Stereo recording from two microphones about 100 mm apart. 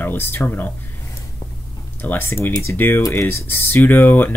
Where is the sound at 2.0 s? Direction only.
20° left (ahead or behind).